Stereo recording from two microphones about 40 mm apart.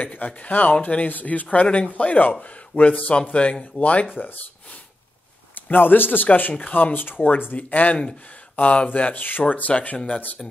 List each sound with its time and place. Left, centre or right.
0.0 s speech: left
1.0 s speech: left
5.5 s speech: left
7.5 s speech: left
9.4 s speech: left